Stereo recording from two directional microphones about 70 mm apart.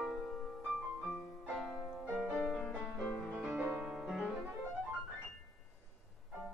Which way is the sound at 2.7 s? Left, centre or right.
Centre.